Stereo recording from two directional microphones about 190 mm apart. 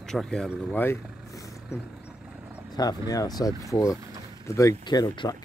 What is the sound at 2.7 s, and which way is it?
Speech, 20° left (ahead or behind).